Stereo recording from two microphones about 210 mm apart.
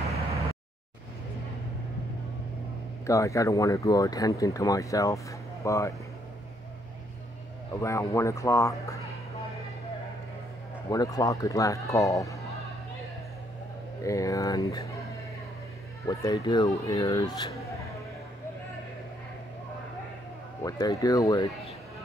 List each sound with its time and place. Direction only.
3.1 s speech: 15° left (ahead or behind)
7.8 s speech: 15° left (ahead or behind)
10.9 s speech: 15° left (ahead or behind)
14.0 s speech: 15° left (ahead or behind)
16.1 s speech: 15° left (ahead or behind)
20.6 s speech: 15° left (ahead or behind)